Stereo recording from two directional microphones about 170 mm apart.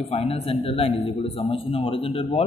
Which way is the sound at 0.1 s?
35° left (ahead or behind).